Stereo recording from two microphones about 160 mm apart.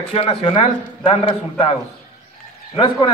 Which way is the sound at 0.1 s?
40° left (ahead or behind).